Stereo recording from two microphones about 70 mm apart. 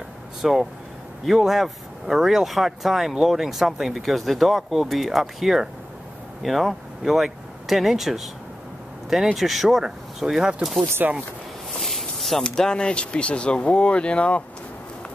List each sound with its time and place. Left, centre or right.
0.4 s speech: centre
11.0 s speech: right
11.8 s a sound: centre
12.4 s speech: centre